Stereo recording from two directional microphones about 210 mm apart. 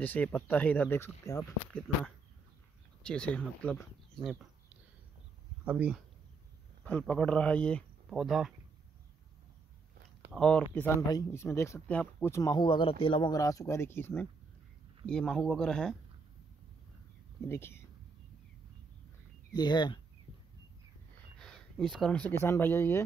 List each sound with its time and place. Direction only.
0.0 s speech: 10° left (ahead or behind)
5.7 s speech: 5° right (ahead or behind)
6.8 s speech: 5° left (ahead or behind)
10.3 s speech: 5° left (ahead or behind)
17.5 s speech: 10° left (ahead or behind)
19.5 s speech: 20° left (ahead or behind)
21.4 s speech: 5° left (ahead or behind)